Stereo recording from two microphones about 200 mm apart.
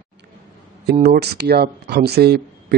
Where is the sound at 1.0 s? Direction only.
55° right (ahead or behind).